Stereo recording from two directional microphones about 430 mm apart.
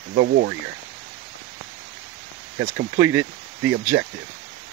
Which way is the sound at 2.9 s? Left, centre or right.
Right.